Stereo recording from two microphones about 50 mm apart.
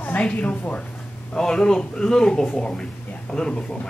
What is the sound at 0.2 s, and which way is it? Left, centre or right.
Speech, left.